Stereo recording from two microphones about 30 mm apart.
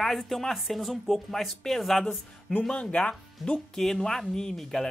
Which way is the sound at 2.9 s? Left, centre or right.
Left.